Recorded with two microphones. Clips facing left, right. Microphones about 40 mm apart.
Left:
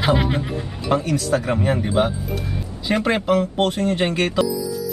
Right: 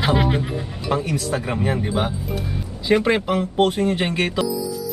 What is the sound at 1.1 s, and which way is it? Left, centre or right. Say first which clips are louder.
Speech: left 3 dB; centre.